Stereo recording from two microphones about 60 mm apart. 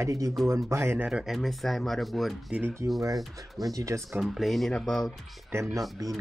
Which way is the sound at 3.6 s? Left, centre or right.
Right.